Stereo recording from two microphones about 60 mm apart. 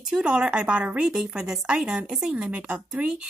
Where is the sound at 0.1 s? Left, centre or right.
Right.